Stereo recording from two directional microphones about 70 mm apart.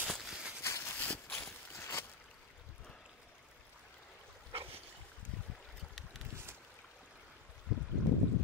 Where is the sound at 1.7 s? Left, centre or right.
Left.